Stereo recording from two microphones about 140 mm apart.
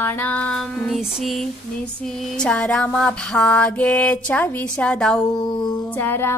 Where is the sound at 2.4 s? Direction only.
5° left (ahead or behind).